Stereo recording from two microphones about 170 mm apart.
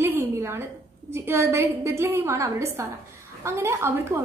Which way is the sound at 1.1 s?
15° right (ahead or behind).